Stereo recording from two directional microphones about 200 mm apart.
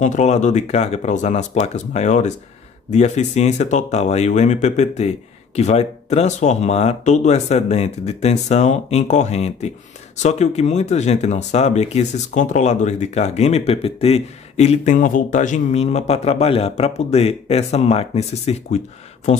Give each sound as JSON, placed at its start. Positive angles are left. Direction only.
{"t": 0.0, "sound": "speech", "side_deg": 35}